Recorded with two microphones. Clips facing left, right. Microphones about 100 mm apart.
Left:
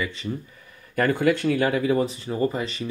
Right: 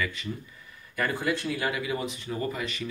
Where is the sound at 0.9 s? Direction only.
55° left (ahead or behind); by 2.9 s 30° left (ahead or behind).